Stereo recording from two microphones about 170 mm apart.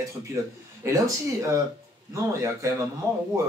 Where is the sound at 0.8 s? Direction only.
15° right (ahead or behind).